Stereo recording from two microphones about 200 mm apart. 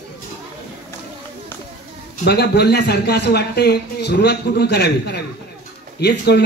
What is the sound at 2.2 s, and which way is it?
A man's voice, 55° left (ahead or behind).